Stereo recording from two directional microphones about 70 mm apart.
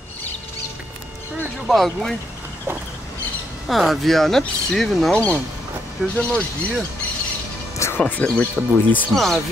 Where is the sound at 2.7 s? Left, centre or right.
Right.